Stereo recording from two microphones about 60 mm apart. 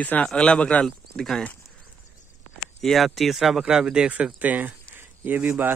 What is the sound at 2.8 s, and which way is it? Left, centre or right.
Speech, centre.